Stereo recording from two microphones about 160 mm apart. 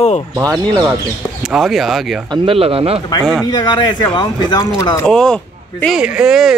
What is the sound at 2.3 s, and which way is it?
Speech, 35° right (ahead or behind).